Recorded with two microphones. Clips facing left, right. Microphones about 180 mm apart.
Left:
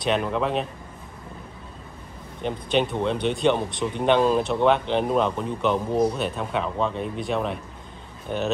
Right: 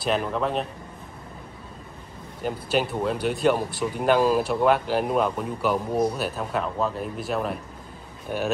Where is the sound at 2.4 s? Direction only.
5° right (ahead or behind).